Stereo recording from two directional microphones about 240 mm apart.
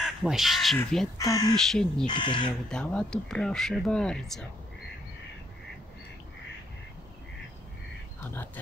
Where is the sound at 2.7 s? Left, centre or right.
Centre.